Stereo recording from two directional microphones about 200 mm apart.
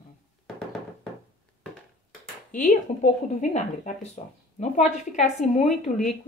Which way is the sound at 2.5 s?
35° left (ahead or behind).